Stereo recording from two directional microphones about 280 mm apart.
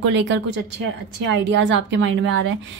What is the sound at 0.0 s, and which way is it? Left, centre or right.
Speech, right.